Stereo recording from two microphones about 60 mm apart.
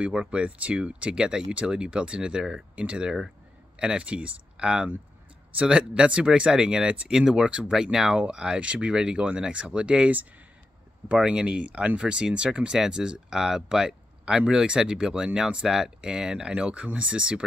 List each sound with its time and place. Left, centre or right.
0.0 s speech: centre